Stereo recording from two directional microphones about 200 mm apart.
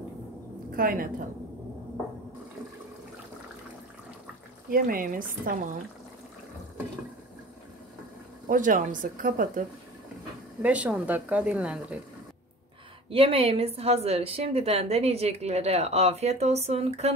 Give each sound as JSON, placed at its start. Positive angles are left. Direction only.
{"t": 0.7, "sound": "speech", "side_deg": -45}
{"t": 4.6, "sound": "speech", "side_deg": -45}
{"t": 8.5, "sound": "a woman's voice", "side_deg": -40}
{"t": 10.6, "sound": "speech", "side_deg": -5}
{"t": 13.1, "sound": "a woman's voice", "side_deg": -30}